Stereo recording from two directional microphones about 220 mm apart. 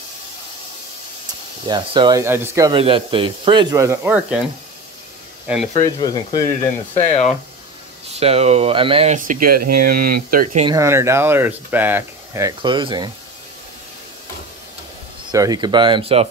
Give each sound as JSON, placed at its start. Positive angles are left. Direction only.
{"t": 1.7, "sound": "speech", "side_deg": -20}
{"t": 5.6, "sound": "speech", "side_deg": 30}
{"t": 5.9, "sound": "speech", "side_deg": 20}
{"t": 7.0, "sound": "speech", "side_deg": 30}
{"t": 8.2, "sound": "speech", "side_deg": -30}
{"t": 10.6, "sound": "speech", "side_deg": -15}
{"t": 15.3, "sound": "speech", "side_deg": -15}